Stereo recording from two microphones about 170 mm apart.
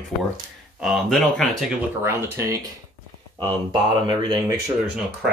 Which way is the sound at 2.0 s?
15° right (ahead or behind).